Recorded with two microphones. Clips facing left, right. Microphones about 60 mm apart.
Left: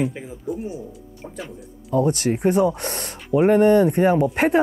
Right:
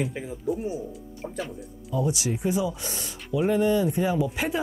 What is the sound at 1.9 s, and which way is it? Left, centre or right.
Speech, left.